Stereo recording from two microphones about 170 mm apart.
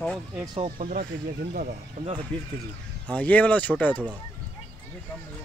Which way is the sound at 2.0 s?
40° right (ahead or behind).